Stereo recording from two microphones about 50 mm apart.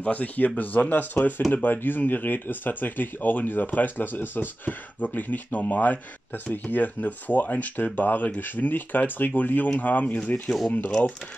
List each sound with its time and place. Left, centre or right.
0.0 s speech: left